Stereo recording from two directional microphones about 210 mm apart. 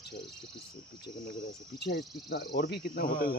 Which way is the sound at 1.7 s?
50° left (ahead or behind).